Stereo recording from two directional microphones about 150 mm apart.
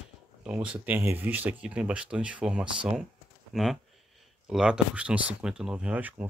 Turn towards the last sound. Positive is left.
turn(degrees=-10)  # may be behind; listen again after turning